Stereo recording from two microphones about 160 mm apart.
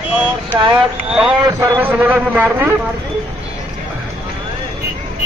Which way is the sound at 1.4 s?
25° right (ahead or behind).